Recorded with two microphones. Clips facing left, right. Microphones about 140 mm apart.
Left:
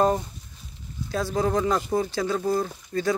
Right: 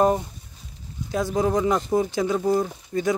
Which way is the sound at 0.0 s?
15° right (ahead or behind).